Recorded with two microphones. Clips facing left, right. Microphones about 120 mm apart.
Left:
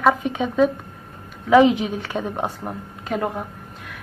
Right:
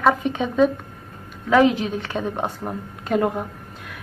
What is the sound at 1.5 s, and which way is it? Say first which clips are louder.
A woman's voice: left 2 dB; 15° left (ahead or behind).